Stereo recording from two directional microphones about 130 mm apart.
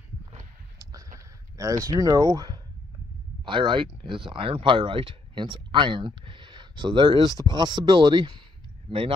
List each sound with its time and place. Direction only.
1.6 s speech: 25° right (ahead or behind)